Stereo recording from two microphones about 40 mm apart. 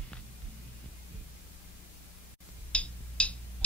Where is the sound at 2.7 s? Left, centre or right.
Left.